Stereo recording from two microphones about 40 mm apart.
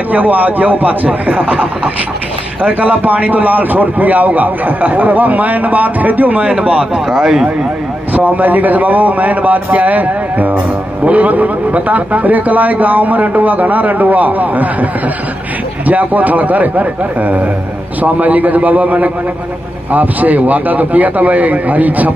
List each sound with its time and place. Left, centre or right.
0.1 s a man's voice: right
6.5 s a man's voice: right
7.1 s speech: centre
8.1 s a man's voice: right
15.9 s a man's voice: right